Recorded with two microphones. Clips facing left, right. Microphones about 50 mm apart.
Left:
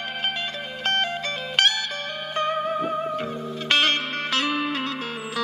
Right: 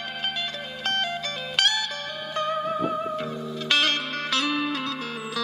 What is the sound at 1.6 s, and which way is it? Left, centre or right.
Music, left.